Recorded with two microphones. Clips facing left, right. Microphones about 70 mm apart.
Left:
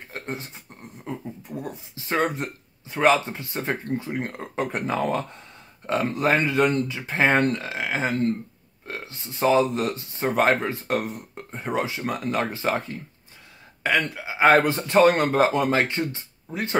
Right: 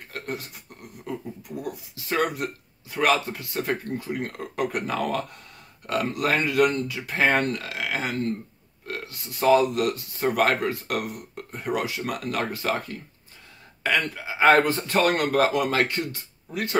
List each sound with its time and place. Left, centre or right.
0.1 s speech: left